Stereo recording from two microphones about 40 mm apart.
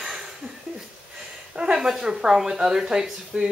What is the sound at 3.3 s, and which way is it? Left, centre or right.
Speech, right.